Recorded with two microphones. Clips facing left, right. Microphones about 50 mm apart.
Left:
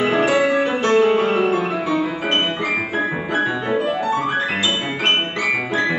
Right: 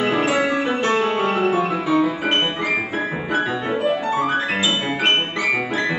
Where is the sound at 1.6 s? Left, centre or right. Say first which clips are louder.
Right 2 dB; centre.